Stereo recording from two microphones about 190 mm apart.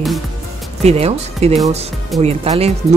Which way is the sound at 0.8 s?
35° right (ahead or behind).